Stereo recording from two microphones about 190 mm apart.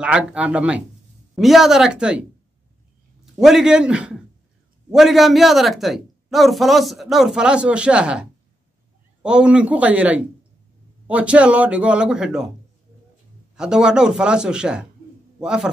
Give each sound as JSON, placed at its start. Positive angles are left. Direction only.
{"t": 0.0, "sound": "a man's voice", "side_deg": -5}
{"t": 3.3, "sound": "a woman's voice", "side_deg": 0}
{"t": 13.6, "sound": "a woman's voice", "side_deg": -5}